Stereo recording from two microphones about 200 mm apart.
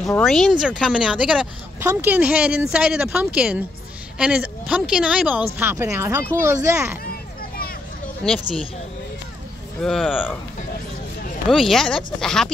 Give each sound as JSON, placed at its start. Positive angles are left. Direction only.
{"t": 0.2, "sound": "a woman's voice", "side_deg": 0}
{"t": 7.1, "sound": "a sound", "side_deg": 50}
{"t": 9.8, "sound": "a woman's voice", "side_deg": 0}
{"t": 11.4, "sound": "a woman's voice", "side_deg": 0}